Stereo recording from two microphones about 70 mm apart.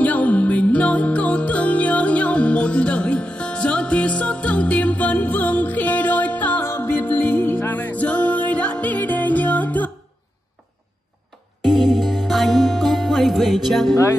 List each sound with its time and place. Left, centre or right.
0.0 s music: left
6.6 s music: left
11.6 s music: centre